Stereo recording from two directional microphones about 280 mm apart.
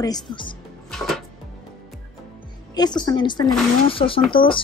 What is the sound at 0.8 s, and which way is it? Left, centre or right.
Music, centre.